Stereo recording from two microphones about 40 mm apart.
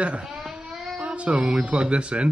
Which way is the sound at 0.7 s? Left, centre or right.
Centre.